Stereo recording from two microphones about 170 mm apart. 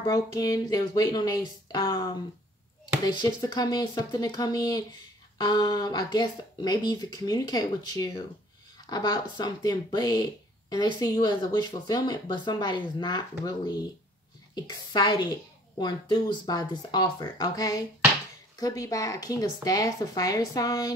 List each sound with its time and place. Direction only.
0.0 s speech: 20° left (ahead or behind)
3.1 s speech: 25° left (ahead or behind)